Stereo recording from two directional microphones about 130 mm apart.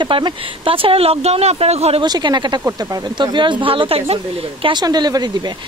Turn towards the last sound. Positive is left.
turn(degrees=-35)  # may be behind; listen again after turning